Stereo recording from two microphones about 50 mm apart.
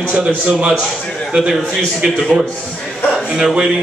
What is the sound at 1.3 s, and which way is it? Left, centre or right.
A man's voice, centre.